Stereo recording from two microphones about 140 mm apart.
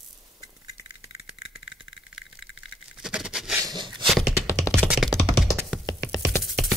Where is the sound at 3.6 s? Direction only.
30° right (ahead or behind).